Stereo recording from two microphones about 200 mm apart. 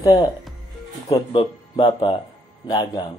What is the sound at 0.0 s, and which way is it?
A man's voice, 20° left (ahead or behind).